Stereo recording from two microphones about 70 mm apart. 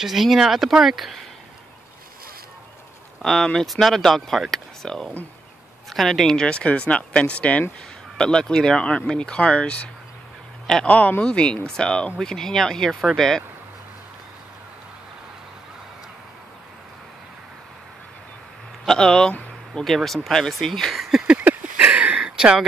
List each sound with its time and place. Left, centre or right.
0.0 s speech: centre
3.2 s speech: centre
18.9 s speech: centre
21.3 s a sound: right